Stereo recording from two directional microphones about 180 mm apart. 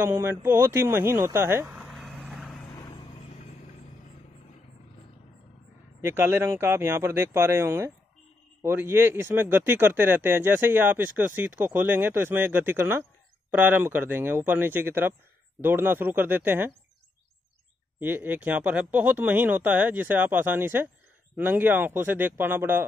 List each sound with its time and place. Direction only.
0.0 s speech: 10° right (ahead or behind)
1.8 s vehicle: centre (ahead or behind)
2.7 s vehicle: 20° left (ahead or behind)
5.9 s speech: 15° right (ahead or behind)
17.9 s speech: 10° right (ahead or behind)